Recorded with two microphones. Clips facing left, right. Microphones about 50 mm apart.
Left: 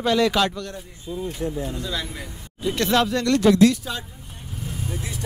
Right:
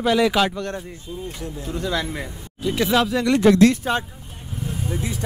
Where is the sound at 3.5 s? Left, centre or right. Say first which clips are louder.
Right 2 dB; right.